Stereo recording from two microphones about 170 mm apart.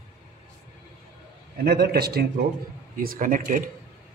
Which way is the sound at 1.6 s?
70° right (ahead or behind).